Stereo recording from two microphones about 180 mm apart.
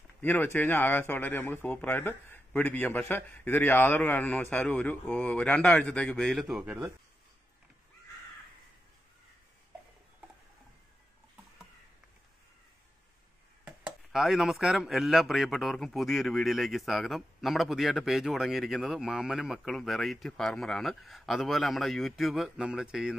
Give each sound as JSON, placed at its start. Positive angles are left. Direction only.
{"t": 0.2, "sound": "speech", "side_deg": 10}
{"t": 13.7, "sound": "speech", "side_deg": -5}